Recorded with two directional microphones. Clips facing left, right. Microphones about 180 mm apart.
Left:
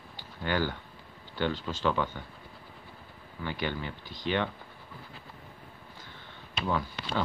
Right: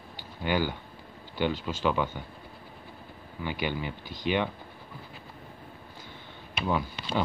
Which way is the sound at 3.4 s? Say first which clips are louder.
Right 2 dB; 10° right (ahead or behind).